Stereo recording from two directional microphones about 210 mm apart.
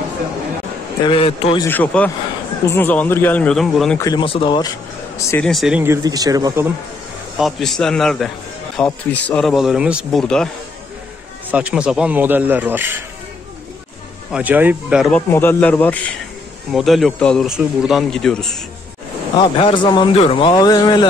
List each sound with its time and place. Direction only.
1.0 s speech: 25° left (ahead or behind)
1.7 s speech: 10° left (ahead or behind)
4.0 s speech: 20° left (ahead or behind)
5.3 s speech: centre (ahead or behind)
6.0 s speech: 15° right (ahead or behind)
7.3 s speech: centre (ahead or behind)
11.5 s speech: 5° right (ahead or behind)
14.3 s speech: 10° right (ahead or behind)
19.3 s speech: 25° left (ahead or behind)